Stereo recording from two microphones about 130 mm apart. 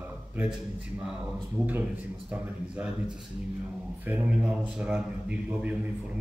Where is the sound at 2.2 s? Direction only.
10° right (ahead or behind).